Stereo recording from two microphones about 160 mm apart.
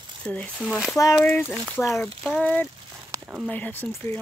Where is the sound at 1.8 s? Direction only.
15° left (ahead or behind).